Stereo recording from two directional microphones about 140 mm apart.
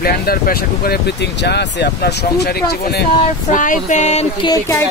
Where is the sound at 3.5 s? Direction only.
70° left (ahead or behind).